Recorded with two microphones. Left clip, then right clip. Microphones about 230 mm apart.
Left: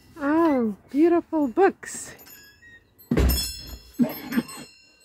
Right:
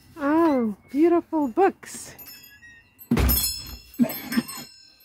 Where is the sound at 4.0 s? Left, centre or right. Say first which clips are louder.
Even; right.